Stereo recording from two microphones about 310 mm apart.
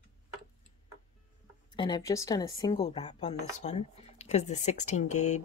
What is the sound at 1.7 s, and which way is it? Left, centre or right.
A woman's voice, centre.